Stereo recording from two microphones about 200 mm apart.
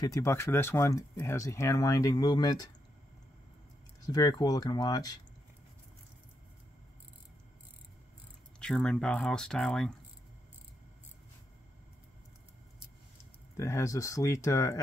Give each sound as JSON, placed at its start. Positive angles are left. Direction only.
{"t": 0.0, "sound": "speech", "side_deg": 15}
{"t": 4.0, "sound": "speech", "side_deg": 20}
{"t": 8.5, "sound": "speech", "side_deg": 5}
{"t": 13.6, "sound": "speech", "side_deg": 15}